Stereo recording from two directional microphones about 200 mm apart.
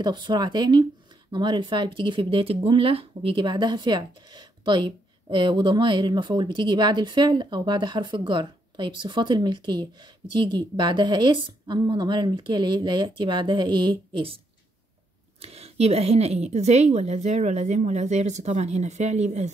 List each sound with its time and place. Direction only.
0.0 s speech: 25° right (ahead or behind)
15.4 s a woman's voice: 30° right (ahead or behind)